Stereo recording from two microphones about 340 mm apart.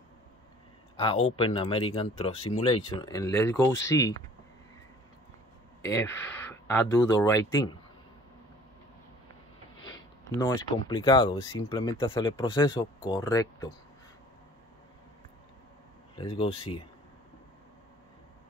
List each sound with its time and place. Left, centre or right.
0.9 s speech: centre
5.9 s speech: centre
9.8 s speech: centre
16.2 s speech: centre